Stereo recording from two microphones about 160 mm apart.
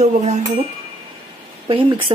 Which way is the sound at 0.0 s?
45° right (ahead or behind).